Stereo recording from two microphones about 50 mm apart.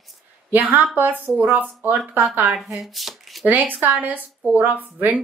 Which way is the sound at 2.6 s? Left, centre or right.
Centre.